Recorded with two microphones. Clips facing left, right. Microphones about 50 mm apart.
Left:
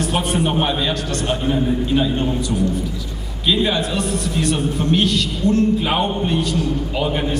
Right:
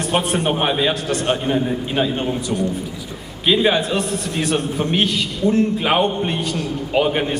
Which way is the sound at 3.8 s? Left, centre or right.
Centre.